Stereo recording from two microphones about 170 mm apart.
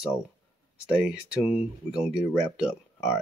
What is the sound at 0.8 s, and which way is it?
Speech, 5° right (ahead or behind).